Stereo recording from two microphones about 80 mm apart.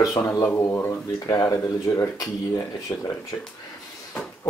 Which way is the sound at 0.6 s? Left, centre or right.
Left.